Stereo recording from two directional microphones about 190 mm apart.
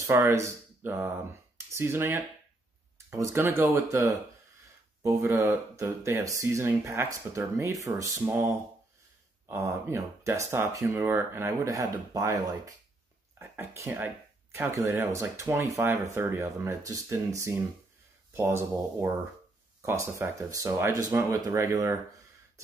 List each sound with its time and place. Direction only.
0.0 s speech: 15° right (ahead or behind)